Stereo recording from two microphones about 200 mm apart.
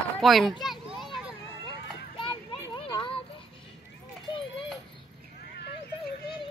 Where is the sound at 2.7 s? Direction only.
25° left (ahead or behind).